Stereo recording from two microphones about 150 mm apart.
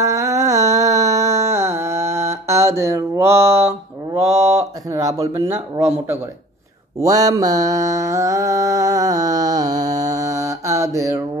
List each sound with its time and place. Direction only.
0.0 s music: 20° right (ahead or behind)
4.9 s speech: 20° right (ahead or behind)
7.0 s mantra: 25° right (ahead or behind)